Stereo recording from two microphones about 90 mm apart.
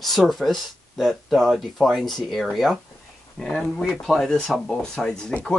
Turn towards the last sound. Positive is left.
turn(degrees=10)  # may be behind; listen again after turning